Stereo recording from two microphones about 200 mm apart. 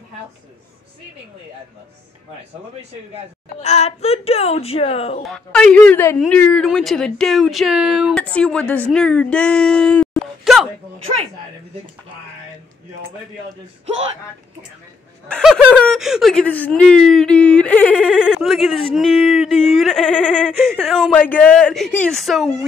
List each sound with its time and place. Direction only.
3.6 s speech: 35° left (ahead or behind)
5.2 s speech: 5° left (ahead or behind)
15.2 s speech: 5° left (ahead or behind)